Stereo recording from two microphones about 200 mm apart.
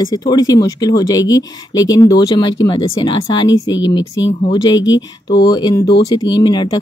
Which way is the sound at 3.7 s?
65° left (ahead or behind).